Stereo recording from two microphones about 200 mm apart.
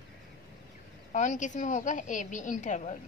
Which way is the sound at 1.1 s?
40° left (ahead or behind).